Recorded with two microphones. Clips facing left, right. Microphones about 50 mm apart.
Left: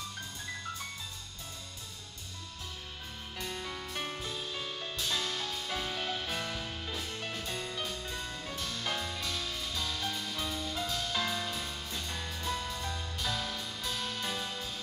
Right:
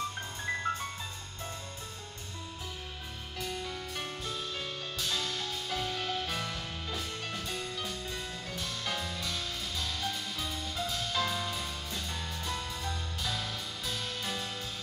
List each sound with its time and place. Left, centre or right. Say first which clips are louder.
0.5 s music: right 9 dB; right
3.3 s music: right 2 dB; centre